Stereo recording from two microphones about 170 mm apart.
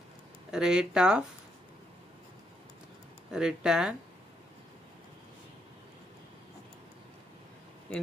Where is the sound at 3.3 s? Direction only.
5° right (ahead or behind).